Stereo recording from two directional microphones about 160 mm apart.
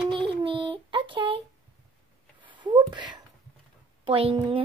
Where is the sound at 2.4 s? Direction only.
30° right (ahead or behind).